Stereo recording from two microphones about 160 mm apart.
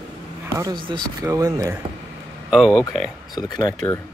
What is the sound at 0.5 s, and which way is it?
Speech, 25° right (ahead or behind).